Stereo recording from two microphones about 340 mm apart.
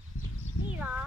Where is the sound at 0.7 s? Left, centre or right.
Centre.